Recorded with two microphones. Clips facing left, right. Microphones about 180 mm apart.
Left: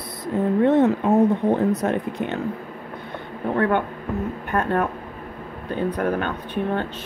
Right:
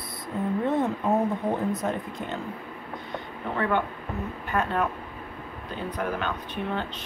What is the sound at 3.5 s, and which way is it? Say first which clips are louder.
Speech: left 5 dB; 55° left (ahead or behind).